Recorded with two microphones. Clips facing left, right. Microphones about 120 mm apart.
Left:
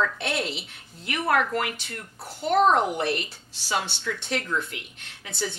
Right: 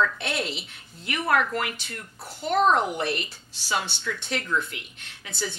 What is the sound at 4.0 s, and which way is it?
Speech, 35° left (ahead or behind).